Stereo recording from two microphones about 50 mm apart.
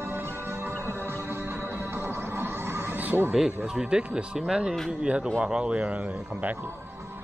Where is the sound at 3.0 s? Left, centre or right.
Right.